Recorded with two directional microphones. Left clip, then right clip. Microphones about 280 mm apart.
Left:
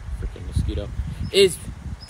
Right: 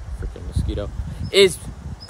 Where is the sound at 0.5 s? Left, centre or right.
Centre.